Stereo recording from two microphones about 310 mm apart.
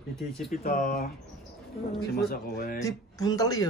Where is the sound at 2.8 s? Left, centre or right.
Centre.